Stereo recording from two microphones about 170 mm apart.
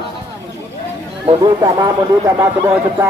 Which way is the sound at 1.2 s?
25° right (ahead or behind).